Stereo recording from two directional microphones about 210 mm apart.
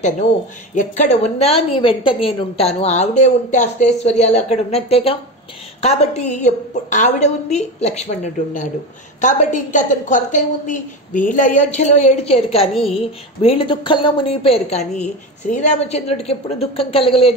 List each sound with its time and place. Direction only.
0.7 s a woman's voice: 35° left (ahead or behind)